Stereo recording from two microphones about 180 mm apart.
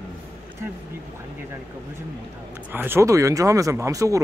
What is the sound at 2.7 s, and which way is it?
Speech, 10° right (ahead or behind).